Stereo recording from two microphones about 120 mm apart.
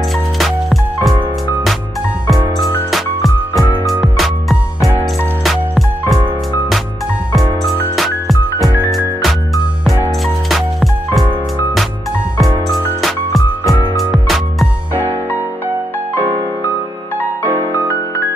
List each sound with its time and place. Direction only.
0.4 s music: centre (ahead or behind)
2.9 s music: centre (ahead or behind)
7.9 s music: centre (ahead or behind)
10.2 s music: centre (ahead or behind)
13.0 s music: centre (ahead or behind)